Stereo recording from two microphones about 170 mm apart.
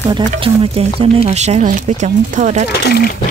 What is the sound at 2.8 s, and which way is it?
Speech, 65° left (ahead or behind).